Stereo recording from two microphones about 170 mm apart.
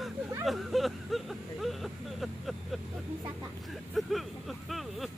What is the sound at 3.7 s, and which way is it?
Vehicle, centre (ahead or behind).